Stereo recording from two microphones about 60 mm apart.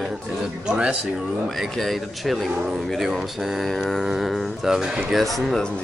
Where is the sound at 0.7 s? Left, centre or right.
Centre.